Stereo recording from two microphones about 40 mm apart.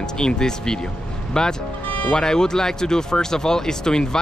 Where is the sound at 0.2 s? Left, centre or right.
Centre.